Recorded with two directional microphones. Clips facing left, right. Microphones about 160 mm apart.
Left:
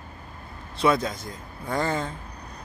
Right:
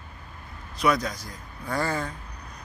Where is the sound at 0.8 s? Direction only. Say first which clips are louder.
Left 2 dB; 25° left (ahead or behind).